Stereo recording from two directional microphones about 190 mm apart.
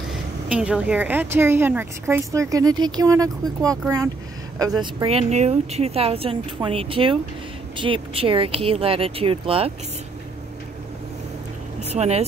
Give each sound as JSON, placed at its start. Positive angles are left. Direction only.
{"t": 0.1, "sound": "speech", "side_deg": -5}
{"t": 5.0, "sound": "speech", "side_deg": -35}
{"t": 11.9, "sound": "speech", "side_deg": -35}